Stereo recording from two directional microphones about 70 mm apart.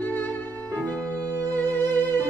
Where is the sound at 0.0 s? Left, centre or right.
Left.